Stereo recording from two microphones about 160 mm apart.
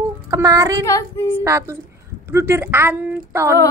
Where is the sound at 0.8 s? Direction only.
20° left (ahead or behind).